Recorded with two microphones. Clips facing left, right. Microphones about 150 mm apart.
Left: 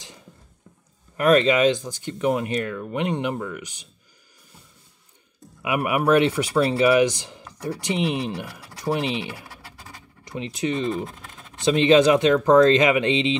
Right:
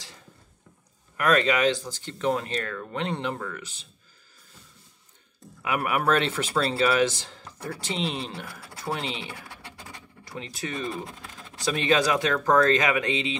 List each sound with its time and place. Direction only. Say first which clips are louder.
1.1 s speech: left 5 dB; 25° left (ahead or behind)
5.6 s speech: left 4 dB; 15° left (ahead or behind)